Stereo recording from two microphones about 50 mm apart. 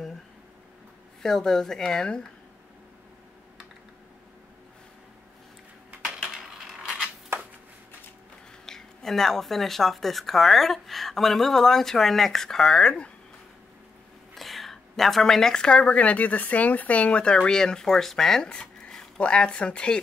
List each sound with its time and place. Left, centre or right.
1.2 s speech: centre
6.1 s a sound: centre
8.6 s speech: centre
14.3 s speech: centre
19.1 s speech: left